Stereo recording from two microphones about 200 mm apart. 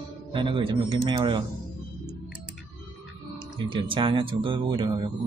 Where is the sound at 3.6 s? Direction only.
25° right (ahead or behind).